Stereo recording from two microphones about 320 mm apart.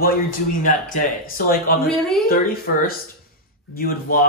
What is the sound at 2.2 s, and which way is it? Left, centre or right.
Speech, left.